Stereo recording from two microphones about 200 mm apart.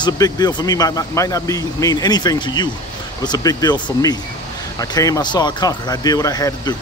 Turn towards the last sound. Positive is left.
turn(degrees=20)  # may be behind; listen again after turning